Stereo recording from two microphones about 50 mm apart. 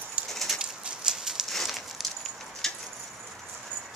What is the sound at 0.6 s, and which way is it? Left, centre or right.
Horse, centre.